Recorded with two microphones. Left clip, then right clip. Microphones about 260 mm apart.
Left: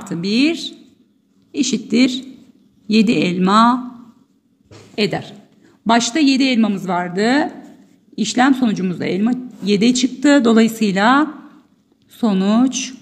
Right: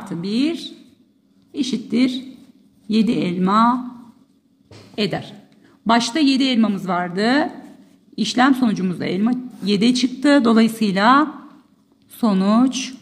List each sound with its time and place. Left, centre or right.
0.1 s speech: centre
4.9 s speech: centre